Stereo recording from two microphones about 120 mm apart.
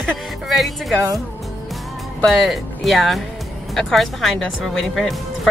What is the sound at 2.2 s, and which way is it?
Speech, centre (ahead or behind).